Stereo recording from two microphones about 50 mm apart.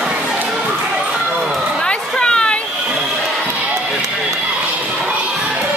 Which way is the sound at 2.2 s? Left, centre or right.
Centre.